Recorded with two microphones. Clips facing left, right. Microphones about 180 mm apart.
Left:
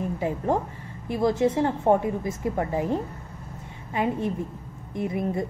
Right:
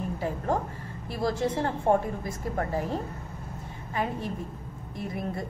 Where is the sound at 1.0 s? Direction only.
20° left (ahead or behind).